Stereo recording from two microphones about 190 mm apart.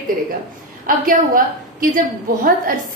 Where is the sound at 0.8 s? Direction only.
45° right (ahead or behind).